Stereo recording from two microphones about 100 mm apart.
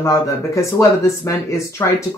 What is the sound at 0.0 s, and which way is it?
Speech, 30° left (ahead or behind).